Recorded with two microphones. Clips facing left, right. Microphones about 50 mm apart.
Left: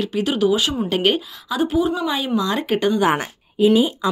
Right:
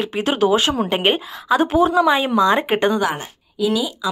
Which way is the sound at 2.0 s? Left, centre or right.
Right.